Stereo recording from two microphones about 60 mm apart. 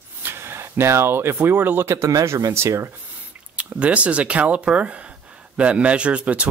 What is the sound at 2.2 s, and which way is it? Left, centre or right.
Speech, right.